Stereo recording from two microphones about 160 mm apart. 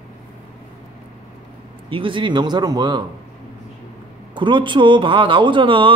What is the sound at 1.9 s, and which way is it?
Speech, 30° right (ahead or behind).